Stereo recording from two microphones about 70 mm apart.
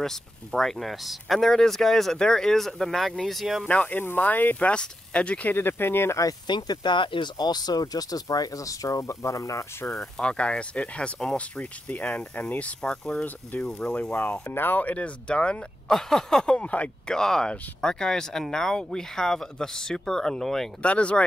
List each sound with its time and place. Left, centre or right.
0.0 s speech: centre
3.6 s speech: left
5.6 s speech: left
6.4 s speech: left
9.8 s speech: centre
10.2 s speech: centre
13.2 s speech: left
14.1 s speech: left
17.1 s speech: centre
20.8 s speech: centre